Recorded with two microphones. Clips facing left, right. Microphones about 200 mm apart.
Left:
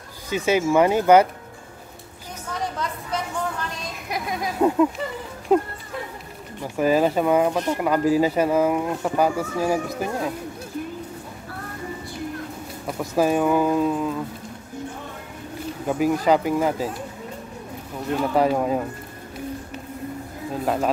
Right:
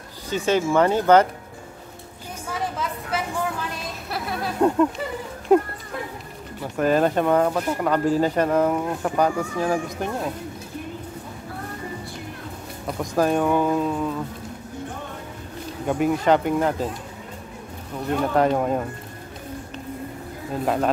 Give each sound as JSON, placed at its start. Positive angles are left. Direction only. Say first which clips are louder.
{"t": 0.3, "sound": "speech", "louder": "left 1 dB", "side_deg": 10}
{"t": 2.4, "sound": "a sound", "louder": "even", "side_deg": -5}
{"t": 4.1, "sound": "speech", "louder": "left 1 dB", "side_deg": 15}
{"t": 6.8, "sound": "speech", "louder": "even", "side_deg": 5}
{"t": 12.8, "sound": "speech", "louder": "left 1 dB", "side_deg": 5}
{"t": 15.9, "sound": "speech", "louder": "even", "side_deg": 0}
{"t": 18.3, "sound": "speech", "louder": "even", "side_deg": 5}
{"t": 20.6, "sound": "speech", "louder": "right 1 dB", "side_deg": 0}